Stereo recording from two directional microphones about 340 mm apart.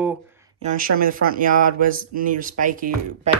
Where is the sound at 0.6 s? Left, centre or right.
Right.